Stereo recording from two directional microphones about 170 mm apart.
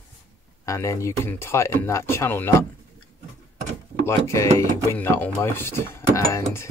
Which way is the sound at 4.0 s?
15° left (ahead or behind).